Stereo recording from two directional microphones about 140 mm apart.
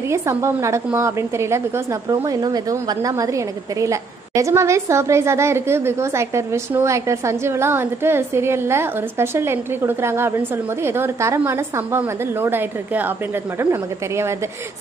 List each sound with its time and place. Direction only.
0.1 s a woman's voice: 20° right (ahead or behind)